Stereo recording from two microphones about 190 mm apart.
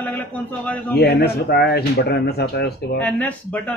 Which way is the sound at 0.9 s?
55° left (ahead or behind).